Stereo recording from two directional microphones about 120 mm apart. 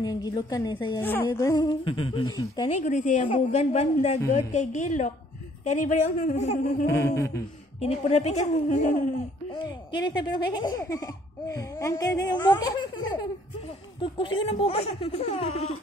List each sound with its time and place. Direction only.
0.0 s speech: 35° left (ahead or behind)
1.0 s a woman's voice: 15° left (ahead or behind)
1.4 s speech: 25° left (ahead or behind)
1.7 s humming: 50° left (ahead or behind)
2.2 s speech: 30° left (ahead or behind)
2.7 s speech: 90° left
3.3 s speech: 65° left (ahead or behind)
4.3 s speech: 90° left; by 6.9 s 70° left (ahead or behind)
6.9 s speech: 25° left (ahead or behind)
7.8 s speech: 60° left (ahead or behind); by 9.1 s 90° left
9.6 s speech: 40° left (ahead or behind)
14.0 s speech: 45° left (ahead or behind); by 15.7 s 65° left (ahead or behind)